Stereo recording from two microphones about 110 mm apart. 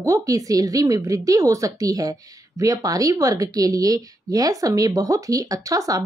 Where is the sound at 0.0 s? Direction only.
30° right (ahead or behind).